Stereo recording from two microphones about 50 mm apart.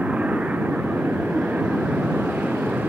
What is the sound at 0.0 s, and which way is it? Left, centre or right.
Vehicle, right.